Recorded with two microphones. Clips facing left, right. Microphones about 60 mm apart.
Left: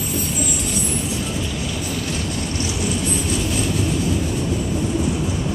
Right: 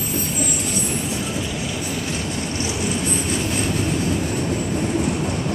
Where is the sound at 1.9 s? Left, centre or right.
Centre; by 5.5 s right.